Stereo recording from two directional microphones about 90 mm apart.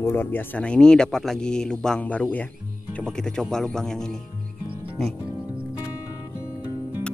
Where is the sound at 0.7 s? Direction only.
10° left (ahead or behind).